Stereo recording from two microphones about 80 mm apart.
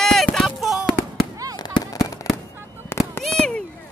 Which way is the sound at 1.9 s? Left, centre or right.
Left.